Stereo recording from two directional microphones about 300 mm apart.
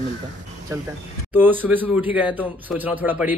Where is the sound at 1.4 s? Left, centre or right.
Centre.